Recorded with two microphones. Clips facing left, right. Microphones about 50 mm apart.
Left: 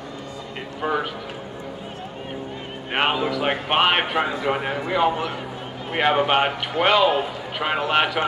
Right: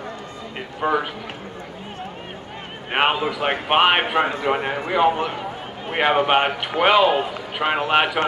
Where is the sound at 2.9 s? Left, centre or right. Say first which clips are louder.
Right 2 dB; centre.